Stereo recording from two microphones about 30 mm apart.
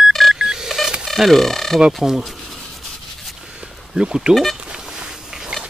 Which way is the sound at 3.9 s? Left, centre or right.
Right.